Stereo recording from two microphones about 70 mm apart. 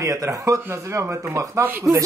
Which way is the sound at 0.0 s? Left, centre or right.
Right.